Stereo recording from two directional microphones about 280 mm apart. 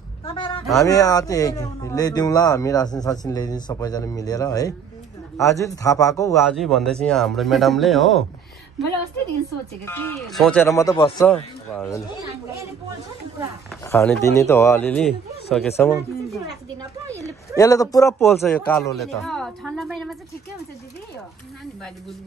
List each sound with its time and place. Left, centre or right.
0.2 s a man's voice: centre
6.5 s a man's voice: centre
9.8 s speech: centre
11.2 s a man's voice: centre
13.8 s a man's voice: centre
17.6 s a man's voice: centre